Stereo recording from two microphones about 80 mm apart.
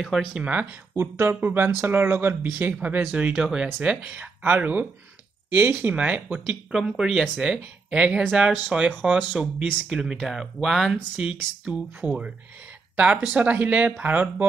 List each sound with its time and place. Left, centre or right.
0.0 s speech: centre
0.4 s speech: centre
0.9 s speech: right
6.7 s speech: centre; by 14.5 s right